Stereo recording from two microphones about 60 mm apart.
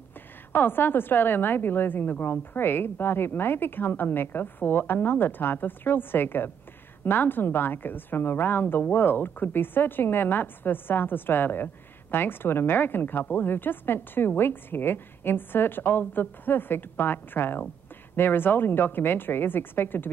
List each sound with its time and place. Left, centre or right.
0.5 s a woman's voice: left